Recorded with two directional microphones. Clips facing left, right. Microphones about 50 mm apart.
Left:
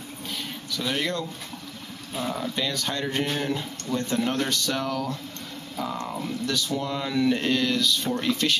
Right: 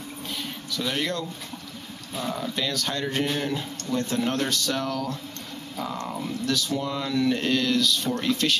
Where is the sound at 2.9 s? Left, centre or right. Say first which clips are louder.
Even; centre.